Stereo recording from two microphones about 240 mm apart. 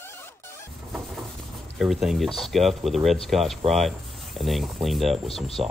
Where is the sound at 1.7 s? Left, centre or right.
Centre.